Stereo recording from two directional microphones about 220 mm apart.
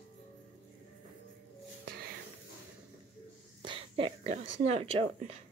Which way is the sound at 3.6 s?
25° right (ahead or behind).